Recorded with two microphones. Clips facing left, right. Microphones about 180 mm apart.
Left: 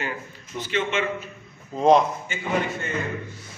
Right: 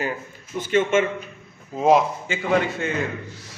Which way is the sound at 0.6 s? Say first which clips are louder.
Right 6 dB; 45° right (ahead or behind).